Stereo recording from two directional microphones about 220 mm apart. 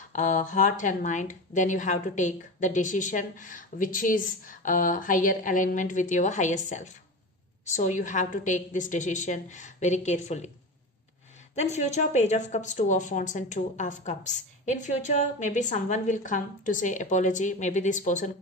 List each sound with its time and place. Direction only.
0.1 s speech: 35° left (ahead or behind)
11.5 s speech: 30° left (ahead or behind)